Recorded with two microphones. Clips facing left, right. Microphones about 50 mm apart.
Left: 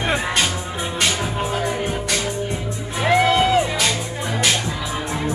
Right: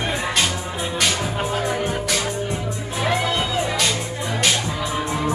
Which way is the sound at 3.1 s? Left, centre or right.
Left.